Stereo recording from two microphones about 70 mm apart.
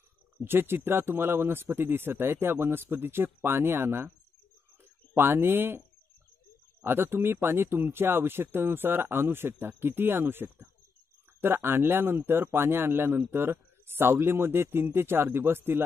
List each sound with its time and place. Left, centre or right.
0.4 s speech: right
5.1 s speech: right
6.8 s speech: right